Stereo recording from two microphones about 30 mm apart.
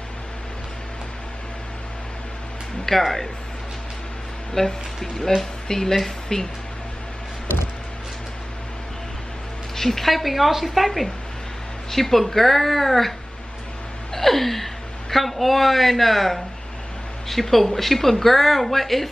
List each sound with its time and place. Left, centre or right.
3.0 s speech: centre
4.6 s speech: left
9.8 s a woman's voice: centre
11.9 s speech: centre
14.1 s a woman's voice: centre